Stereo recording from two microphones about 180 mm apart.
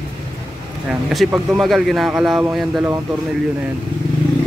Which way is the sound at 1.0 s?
Centre (ahead or behind).